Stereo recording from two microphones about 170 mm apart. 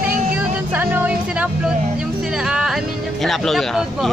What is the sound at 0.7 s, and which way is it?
Music, 10° right (ahead or behind).